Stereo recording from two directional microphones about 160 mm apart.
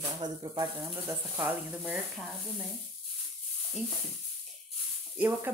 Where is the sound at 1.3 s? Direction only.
10° right (ahead or behind).